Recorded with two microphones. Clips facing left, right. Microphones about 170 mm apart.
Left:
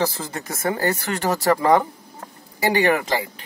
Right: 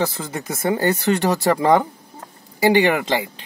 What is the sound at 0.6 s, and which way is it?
Speech, 20° right (ahead or behind).